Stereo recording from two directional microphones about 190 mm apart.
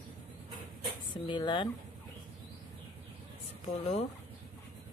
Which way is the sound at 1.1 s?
25° left (ahead or behind).